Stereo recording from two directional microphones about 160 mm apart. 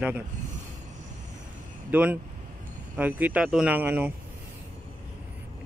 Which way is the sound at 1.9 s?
10° right (ahead or behind).